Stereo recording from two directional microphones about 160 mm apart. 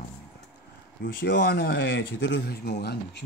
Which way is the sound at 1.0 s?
75° left (ahead or behind).